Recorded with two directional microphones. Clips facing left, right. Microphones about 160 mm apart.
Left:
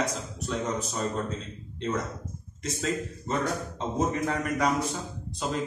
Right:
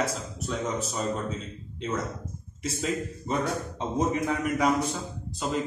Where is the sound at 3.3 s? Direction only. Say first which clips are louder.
Right 1 dB; 10° right (ahead or behind).